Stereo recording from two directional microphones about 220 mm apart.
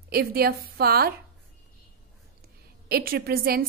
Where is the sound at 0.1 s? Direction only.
45° right (ahead or behind).